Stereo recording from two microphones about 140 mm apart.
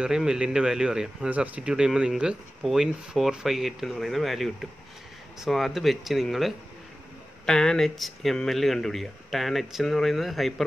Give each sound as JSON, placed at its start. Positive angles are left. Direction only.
{"t": 0.0, "sound": "speech", "side_deg": -5}